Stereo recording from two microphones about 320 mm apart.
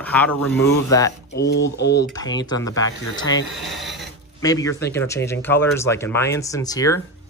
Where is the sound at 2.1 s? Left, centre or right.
Centre.